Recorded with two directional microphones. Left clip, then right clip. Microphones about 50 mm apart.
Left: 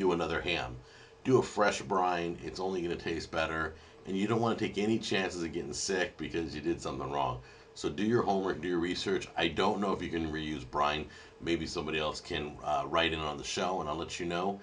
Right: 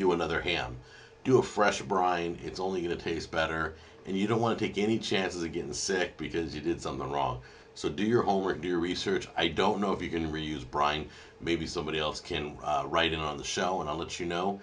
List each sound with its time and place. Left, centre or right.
0.0 s speech: left